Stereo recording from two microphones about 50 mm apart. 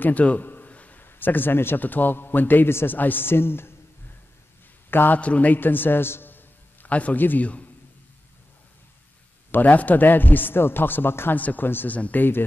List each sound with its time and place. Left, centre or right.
0.0 s a sound: left
1.0 s a man's voice: left
2.7 s speech: left
3.0 s speech: left
4.9 s speech: left
5.2 s a man's voice: left
6.9 s a man's voice: left
7.2 s a man's voice: left
9.5 s a man's voice: left
11.3 s a man's voice: left
11.9 s a man's voice: left